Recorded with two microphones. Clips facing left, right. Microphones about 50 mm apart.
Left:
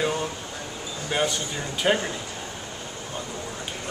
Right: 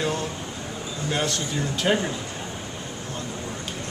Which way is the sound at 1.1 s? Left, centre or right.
Centre.